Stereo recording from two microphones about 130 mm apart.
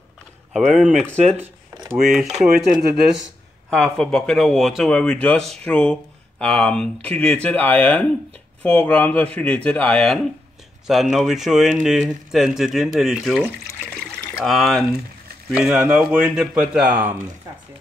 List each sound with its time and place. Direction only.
0.5 s speech: centre (ahead or behind)
1.1 s speech: 60° right (ahead or behind)
1.4 s a sound: 25° right (ahead or behind)
1.9 s speech: centre (ahead or behind)
3.7 s speech: 5° left (ahead or behind)
14.4 s speech: centre (ahead or behind); by 17.2 s 15° right (ahead or behind)